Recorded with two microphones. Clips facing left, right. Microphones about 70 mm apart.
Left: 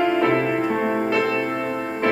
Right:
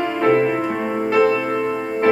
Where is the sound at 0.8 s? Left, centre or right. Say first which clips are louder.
Even; left.